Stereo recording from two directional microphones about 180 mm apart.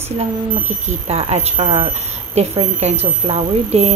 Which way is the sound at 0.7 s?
35° right (ahead or behind).